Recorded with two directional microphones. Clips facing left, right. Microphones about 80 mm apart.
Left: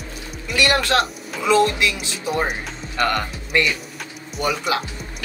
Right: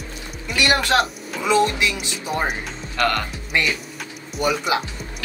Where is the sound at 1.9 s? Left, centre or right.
Centre.